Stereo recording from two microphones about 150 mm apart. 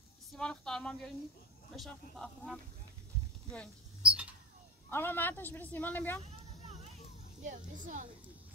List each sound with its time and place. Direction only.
0.4 s speech: 5° left (ahead or behind)
4.0 s a sound: 5° right (ahead or behind)
4.8 s speech: 15° left (ahead or behind)
7.4 s speech: 60° right (ahead or behind)